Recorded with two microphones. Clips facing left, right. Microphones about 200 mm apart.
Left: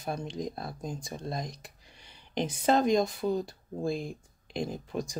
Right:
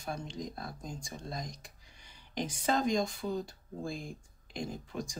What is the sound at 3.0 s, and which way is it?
Speech, 20° left (ahead or behind).